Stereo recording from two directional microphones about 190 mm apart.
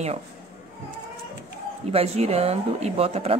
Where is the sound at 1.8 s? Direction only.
35° right (ahead or behind).